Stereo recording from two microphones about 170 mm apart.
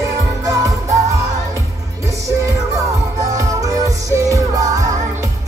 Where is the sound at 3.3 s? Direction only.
20° right (ahead or behind).